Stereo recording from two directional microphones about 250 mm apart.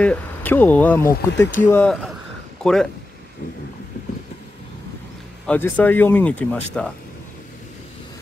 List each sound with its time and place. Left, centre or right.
0.0 s speech: centre
1.0 s speech: left
1.7 s speech: centre
5.5 s speech: centre